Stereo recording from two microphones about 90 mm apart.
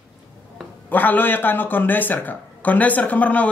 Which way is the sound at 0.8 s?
20° left (ahead or behind).